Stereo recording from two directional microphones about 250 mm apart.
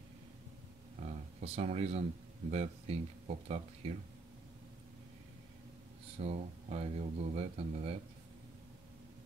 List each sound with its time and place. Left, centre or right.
1.0 s a sound: right
2.5 s speech: right
6.1 s speech: right